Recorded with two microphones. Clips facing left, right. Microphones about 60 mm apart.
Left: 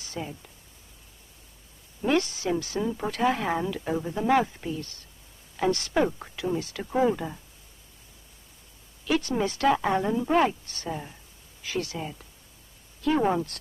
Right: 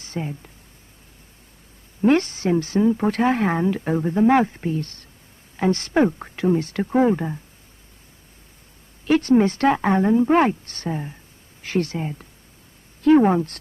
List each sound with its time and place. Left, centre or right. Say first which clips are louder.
0.0 s speech: right 6 dB; right
2.0 s speech: right 7 dB; right
2.8 s speech: right 10 dB; right
3.1 s speech: right 6 dB; right
6.9 s speech: right 5 dB; right
9.0 s speech: right 9 dB; right
10.9 s speech: right 6 dB; right
11.6 s speech: right 7 dB; right